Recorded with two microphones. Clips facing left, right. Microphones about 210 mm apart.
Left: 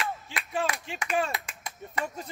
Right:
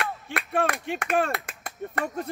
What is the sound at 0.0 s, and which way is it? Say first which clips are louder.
Clapping: right 3 dB; 60° right (ahead or behind).